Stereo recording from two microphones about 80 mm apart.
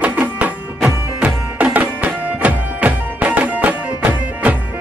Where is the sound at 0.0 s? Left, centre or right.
Centre.